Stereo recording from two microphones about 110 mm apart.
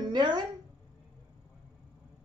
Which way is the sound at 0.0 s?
40° right (ahead or behind).